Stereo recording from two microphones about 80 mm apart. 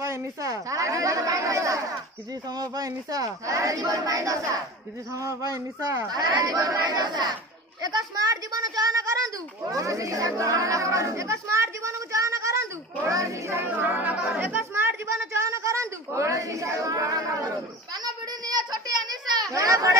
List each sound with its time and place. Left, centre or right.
0.0 s a child's voice: right
13.5 s speech: right
18.0 s a sound: right